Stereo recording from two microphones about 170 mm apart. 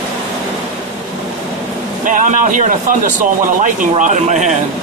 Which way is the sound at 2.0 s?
50° right (ahead or behind).